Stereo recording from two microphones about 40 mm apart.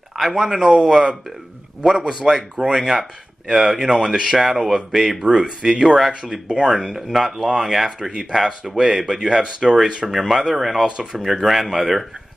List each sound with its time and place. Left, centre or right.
0.1 s speech: centre
6.2 s speech: centre
6.7 s speech: centre